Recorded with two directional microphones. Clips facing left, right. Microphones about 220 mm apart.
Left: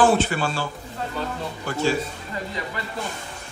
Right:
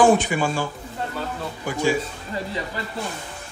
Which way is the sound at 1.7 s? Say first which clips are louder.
Right 1 dB; 15° right (ahead or behind).